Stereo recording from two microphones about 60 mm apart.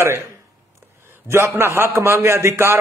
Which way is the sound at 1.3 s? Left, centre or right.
Right.